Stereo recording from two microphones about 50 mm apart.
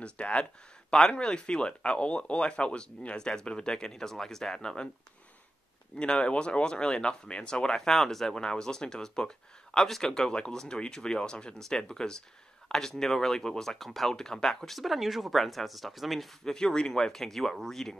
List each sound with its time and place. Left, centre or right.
0.0 s speech: left
5.9 s speech: left; by 16.5 s centre
16.5 s speech: centre